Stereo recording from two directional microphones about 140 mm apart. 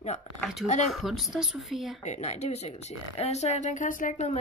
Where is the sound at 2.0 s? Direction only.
55° left (ahead or behind).